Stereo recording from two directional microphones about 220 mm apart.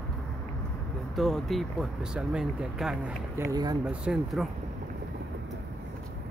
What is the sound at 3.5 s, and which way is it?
Speech, 20° right (ahead or behind).